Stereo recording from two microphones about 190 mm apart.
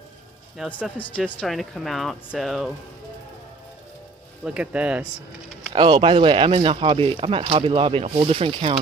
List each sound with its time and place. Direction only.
0.6 s speech: 5° left (ahead or behind)
4.5 s speech: 5° right (ahead or behind)
5.7 s speech: 25° right (ahead or behind)